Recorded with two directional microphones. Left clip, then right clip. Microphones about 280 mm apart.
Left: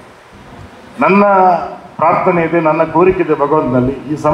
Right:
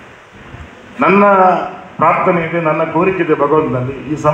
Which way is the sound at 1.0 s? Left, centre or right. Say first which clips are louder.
Even; left.